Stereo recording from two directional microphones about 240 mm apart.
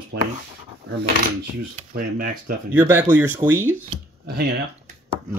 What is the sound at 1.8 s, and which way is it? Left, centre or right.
Speech, right.